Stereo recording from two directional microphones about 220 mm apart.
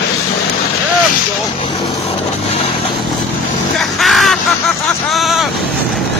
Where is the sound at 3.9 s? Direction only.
Centre (ahead or behind).